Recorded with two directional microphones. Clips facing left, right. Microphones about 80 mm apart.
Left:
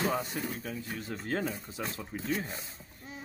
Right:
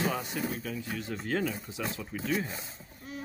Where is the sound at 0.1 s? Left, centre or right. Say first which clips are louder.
Even; left.